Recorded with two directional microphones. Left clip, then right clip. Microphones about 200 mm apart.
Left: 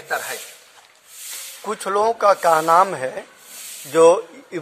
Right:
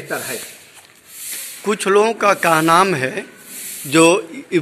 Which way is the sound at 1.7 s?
20° left (ahead or behind).